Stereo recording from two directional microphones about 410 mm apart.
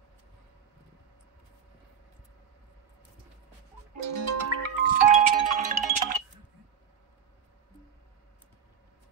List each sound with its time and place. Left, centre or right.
4.0 s music: right
4.8 s music: centre